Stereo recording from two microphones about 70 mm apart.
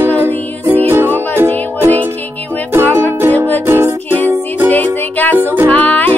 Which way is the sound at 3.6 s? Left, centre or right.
Right.